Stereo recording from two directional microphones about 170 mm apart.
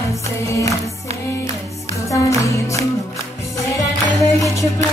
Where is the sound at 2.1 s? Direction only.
20° left (ahead or behind).